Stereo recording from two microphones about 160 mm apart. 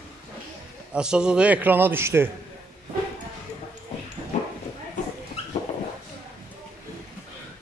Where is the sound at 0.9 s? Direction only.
5° right (ahead or behind).